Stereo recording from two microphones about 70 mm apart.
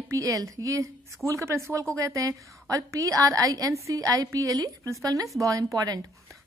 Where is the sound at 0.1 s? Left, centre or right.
Right.